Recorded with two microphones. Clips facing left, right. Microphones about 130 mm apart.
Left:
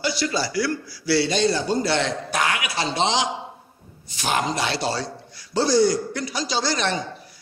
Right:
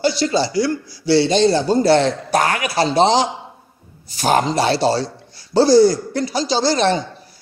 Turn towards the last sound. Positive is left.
turn(degrees=-30)  # may be behind; listen again after turning